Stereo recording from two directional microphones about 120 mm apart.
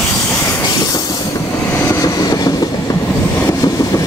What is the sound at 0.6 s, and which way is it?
Train, 30° left (ahead or behind).